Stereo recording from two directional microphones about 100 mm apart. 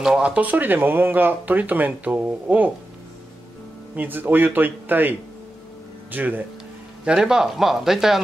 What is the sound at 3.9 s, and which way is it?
Speech, 20° right (ahead or behind).